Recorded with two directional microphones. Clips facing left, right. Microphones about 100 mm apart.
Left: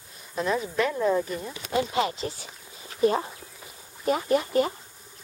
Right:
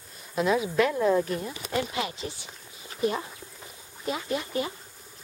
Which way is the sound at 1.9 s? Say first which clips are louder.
Left 5 dB; 35° left (ahead or behind).